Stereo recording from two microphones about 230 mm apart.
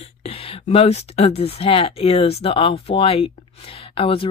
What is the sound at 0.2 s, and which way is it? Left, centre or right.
Speech, left.